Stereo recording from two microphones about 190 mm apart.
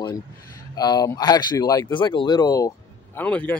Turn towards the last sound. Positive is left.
turn(degrees=10)  # may be behind; listen again after turning